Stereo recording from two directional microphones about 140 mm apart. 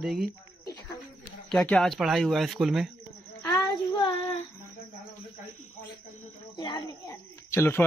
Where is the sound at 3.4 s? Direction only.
35° left (ahead or behind).